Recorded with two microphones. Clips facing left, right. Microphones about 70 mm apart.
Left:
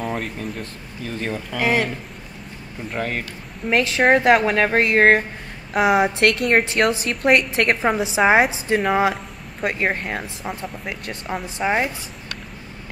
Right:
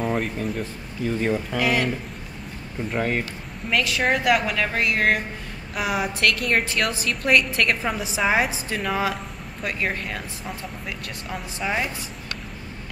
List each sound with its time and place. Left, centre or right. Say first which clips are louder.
0.0 s speech: right 2 dB; centre
1.6 s a woman's voice: left 4 dB; left
2.9 s speech: right 1 dB; centre
3.7 s a woman's voice: left 6 dB; left
6.4 s a woman's voice: left 5 dB; left
8.2 s a woman's voice: left 6 dB; left
8.6 s a woman's voice: left 6 dB; left
11.6 s a woman's voice: left 5 dB; left